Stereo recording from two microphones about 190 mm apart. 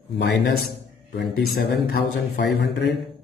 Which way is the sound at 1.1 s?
60° left (ahead or behind).